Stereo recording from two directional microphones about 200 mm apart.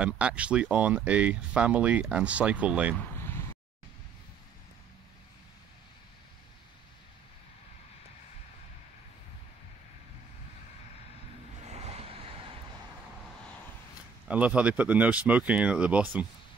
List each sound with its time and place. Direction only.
0.0 s speech: 5° right (ahead or behind)
11.7 s vehicle: 30° right (ahead or behind)
14.2 s speech: 5° right (ahead or behind)